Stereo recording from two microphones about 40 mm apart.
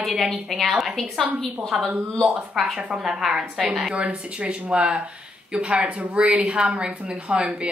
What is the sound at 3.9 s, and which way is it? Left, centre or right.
Speech, right.